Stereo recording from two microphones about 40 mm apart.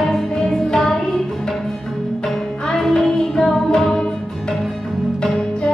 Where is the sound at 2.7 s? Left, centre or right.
Centre.